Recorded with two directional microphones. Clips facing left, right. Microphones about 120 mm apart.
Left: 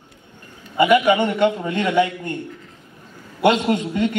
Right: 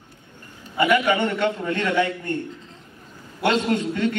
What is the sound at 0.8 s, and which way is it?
A man's voice, 15° left (ahead or behind).